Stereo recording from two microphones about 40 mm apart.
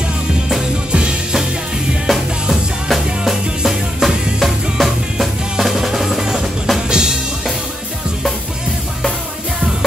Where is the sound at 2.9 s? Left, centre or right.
Centre.